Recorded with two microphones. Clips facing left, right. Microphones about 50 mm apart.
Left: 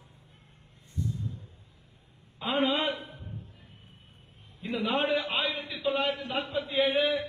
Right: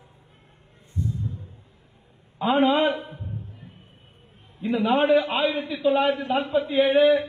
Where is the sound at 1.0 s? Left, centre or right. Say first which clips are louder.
Right 4 dB; right.